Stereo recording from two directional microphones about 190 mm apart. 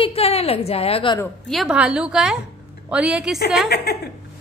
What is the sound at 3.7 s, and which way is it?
Speech, 55° left (ahead or behind).